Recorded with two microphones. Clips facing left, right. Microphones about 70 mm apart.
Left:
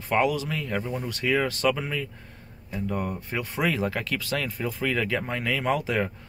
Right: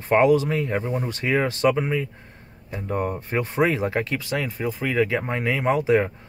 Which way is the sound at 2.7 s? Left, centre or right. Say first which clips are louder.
Right 3 dB; right.